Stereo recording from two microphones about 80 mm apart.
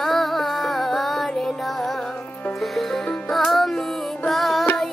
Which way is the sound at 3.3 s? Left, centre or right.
Centre.